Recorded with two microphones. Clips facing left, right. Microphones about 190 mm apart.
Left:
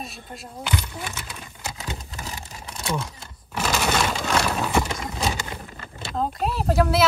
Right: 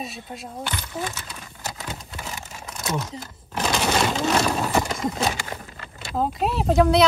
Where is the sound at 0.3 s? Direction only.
Centre (ahead or behind).